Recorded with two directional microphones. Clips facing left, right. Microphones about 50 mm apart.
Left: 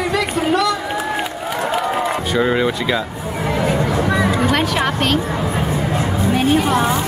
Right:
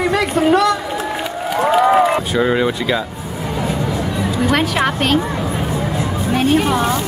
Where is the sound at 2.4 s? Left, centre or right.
Centre.